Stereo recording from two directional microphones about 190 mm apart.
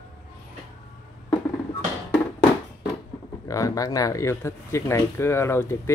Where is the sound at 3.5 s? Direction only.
15° left (ahead or behind).